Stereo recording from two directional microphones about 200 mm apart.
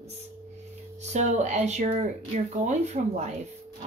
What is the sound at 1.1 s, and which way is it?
Speech, 35° right (ahead or behind).